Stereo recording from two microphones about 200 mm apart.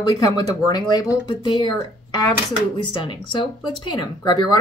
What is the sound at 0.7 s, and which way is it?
Speech, 20° left (ahead or behind).